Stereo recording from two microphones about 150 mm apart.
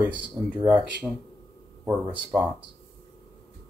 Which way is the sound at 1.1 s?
10° left (ahead or behind).